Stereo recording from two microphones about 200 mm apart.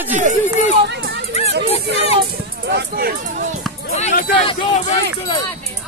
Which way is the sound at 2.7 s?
55° right (ahead or behind).